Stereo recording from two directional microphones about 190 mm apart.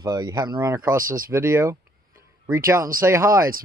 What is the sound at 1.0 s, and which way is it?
Speech, 45° right (ahead or behind).